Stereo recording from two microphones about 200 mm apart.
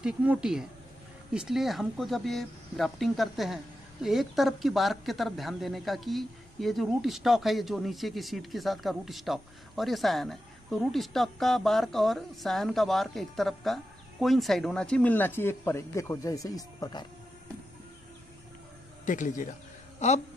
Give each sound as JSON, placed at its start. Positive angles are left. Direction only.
{"t": 0.0, "sound": "speech", "side_deg": -5}
{"t": 19.0, "sound": "speech", "side_deg": 40}